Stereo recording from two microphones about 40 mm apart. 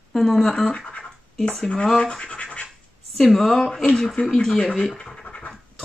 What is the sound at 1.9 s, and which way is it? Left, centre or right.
Speech, left.